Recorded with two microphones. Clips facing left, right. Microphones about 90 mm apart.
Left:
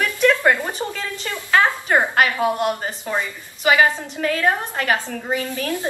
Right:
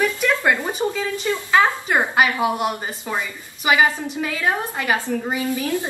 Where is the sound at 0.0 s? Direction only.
20° right (ahead or behind).